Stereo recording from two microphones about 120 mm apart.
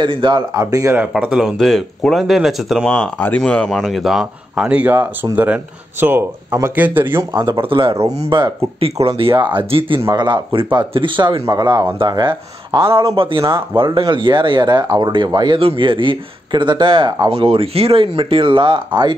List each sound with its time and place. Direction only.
0.0 s speech: 45° right (ahead or behind)
0.6 s speech: 30° right (ahead or behind)
1.2 s speech: 5° right (ahead or behind)
2.9 s speech: 10° left (ahead or behind); by 7.4 s 20° right (ahead or behind)
7.4 s speech: 45° right (ahead or behind)
17.3 s speech: 50° right (ahead or behind)